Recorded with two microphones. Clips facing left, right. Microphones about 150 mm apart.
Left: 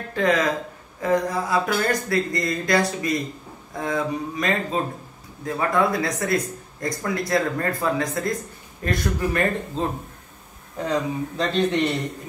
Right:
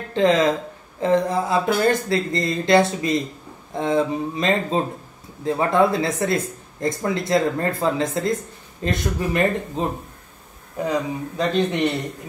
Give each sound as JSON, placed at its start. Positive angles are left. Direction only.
{"t": 0.1, "sound": "speech", "side_deg": -25}
{"t": 10.9, "sound": "speech", "side_deg": -10}